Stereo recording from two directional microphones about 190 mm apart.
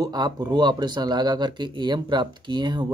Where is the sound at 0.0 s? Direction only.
20° right (ahead or behind).